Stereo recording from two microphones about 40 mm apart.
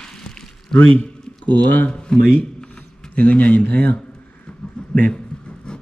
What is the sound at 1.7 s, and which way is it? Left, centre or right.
Speech, left.